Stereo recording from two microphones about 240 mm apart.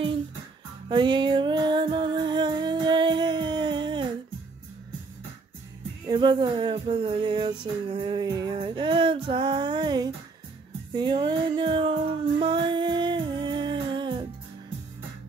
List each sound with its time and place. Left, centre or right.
0.8 s music: centre
6.0 s music: centre